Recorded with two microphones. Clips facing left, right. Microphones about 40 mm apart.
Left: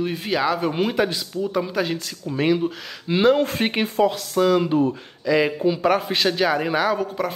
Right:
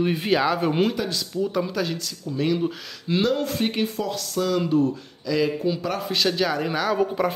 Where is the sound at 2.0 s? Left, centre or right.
Left.